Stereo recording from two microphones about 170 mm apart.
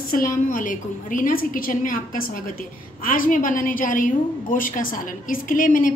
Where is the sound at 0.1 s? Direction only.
55° left (ahead or behind).